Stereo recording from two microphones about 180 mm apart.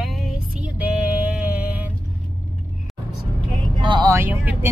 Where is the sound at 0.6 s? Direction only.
5° right (ahead or behind).